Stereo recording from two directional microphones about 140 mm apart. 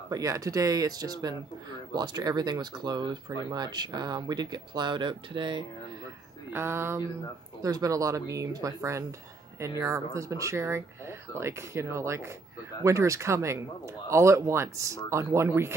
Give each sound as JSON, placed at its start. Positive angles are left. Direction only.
{"t": 0.1, "sound": "speech", "side_deg": -25}
{"t": 6.5, "sound": "speech", "side_deg": -15}